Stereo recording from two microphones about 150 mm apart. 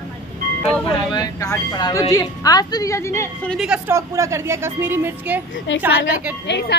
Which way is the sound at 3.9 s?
20° right (ahead or behind).